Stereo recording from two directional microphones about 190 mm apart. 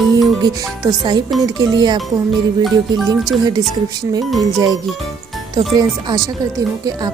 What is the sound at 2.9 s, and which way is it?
Speech, centre (ahead or behind).